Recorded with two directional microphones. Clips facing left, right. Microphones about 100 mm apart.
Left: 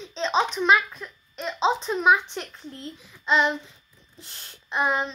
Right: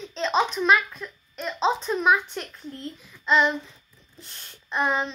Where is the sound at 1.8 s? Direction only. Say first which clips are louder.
Left 1 dB; 15° left (ahead or behind).